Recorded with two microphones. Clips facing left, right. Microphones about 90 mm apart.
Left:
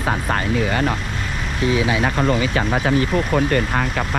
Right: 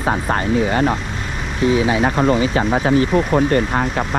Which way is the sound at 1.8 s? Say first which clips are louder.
Right 2 dB; 40° right (ahead or behind).